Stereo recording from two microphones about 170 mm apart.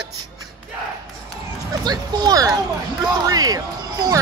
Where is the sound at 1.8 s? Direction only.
25° right (ahead or behind).